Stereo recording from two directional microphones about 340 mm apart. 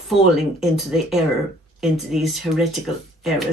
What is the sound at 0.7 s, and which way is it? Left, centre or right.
Speech, centre.